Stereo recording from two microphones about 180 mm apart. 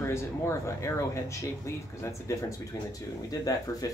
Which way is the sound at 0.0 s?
15° left (ahead or behind).